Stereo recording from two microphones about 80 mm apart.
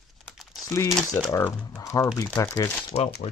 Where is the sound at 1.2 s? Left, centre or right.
Left.